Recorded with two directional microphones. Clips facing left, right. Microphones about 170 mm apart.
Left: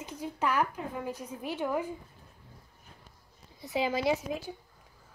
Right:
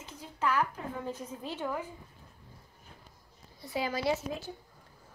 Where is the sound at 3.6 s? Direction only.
20° left (ahead or behind).